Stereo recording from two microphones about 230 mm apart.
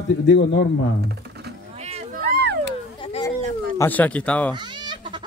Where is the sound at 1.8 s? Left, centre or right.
Right.